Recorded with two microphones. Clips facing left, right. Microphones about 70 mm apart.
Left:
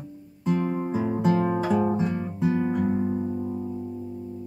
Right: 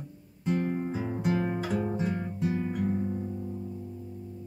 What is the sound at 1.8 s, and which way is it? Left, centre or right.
Guitar, left.